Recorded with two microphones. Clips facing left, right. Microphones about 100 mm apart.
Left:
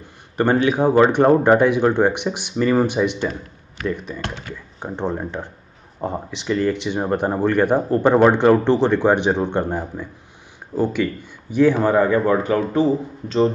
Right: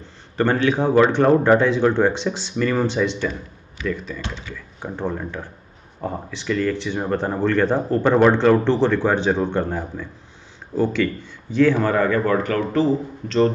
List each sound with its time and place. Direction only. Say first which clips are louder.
0.0 s speech: left 1 dB; 15° left (ahead or behind)
4.2 s speech: left 2 dB; 55° left (ahead or behind)
4.7 s speech: left 2 dB; 20° left (ahead or behind)